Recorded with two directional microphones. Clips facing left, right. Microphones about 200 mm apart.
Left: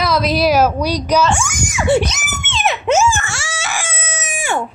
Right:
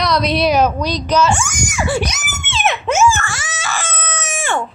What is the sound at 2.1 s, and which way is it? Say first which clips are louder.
Screaming: left 1 dB; 5° right (ahead or behind).